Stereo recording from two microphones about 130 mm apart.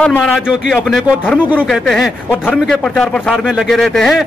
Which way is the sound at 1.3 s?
15° right (ahead or behind).